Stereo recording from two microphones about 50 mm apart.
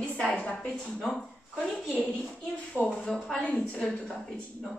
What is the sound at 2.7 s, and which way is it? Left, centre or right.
Speech, left.